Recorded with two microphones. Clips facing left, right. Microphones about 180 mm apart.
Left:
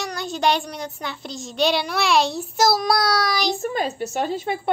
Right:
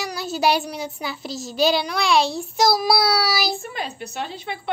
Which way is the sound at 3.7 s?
45° left (ahead or behind).